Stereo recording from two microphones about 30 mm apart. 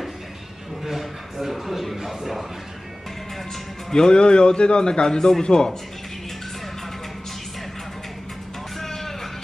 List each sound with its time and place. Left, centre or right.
0.8 s a sound: centre
2.0 s speech: centre
3.9 s a man's voice: left
8.7 s vehicle: centre